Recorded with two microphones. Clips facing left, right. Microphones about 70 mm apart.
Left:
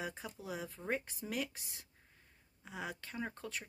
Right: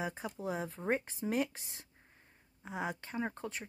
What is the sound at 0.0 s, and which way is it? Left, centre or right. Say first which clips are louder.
Speech: right 4 dB; right.